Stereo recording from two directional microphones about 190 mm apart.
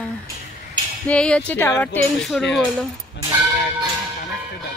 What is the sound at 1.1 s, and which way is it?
A woman's voice, 5° left (ahead or behind).